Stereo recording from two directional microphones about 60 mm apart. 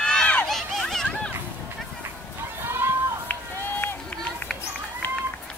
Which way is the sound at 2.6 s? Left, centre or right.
Right.